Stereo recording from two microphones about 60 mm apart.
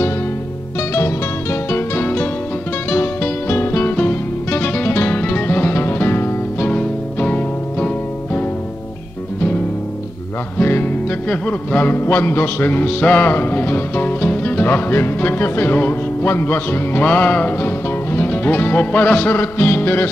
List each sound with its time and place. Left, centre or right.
0.7 s music: left
6.7 s music: left
10.6 s music: left
12.7 s music: left